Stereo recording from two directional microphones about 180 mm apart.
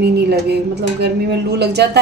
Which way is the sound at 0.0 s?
60° right (ahead or behind).